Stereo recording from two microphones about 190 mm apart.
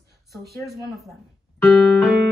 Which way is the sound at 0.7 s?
20° right (ahead or behind).